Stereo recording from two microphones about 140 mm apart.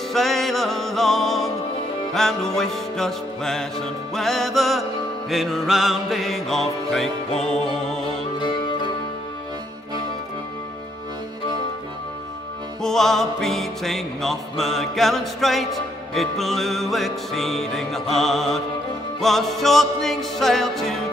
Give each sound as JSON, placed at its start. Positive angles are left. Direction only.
{"t": 0.1, "sound": "music", "side_deg": 0}
{"t": 8.4, "sound": "music", "side_deg": 35}
{"t": 12.8, "sound": "music", "side_deg": 5}